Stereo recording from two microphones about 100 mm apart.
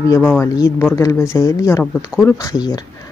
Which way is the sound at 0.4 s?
30° left (ahead or behind).